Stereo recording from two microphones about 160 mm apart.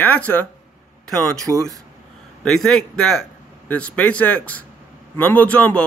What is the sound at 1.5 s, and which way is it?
Speech, 20° right (ahead or behind).